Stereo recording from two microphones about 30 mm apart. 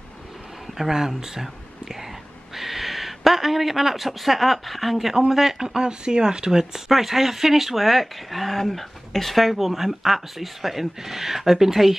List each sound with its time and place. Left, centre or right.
0.7 s speech: centre
2.5 s a sound: centre
4.0 s speech: centre
5.6 s speech: right
6.9 s speech: centre